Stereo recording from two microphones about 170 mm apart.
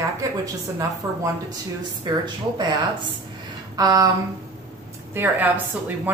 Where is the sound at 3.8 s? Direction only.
20° right (ahead or behind).